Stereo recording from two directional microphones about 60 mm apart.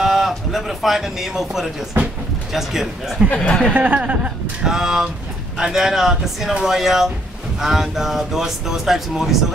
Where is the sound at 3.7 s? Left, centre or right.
Right.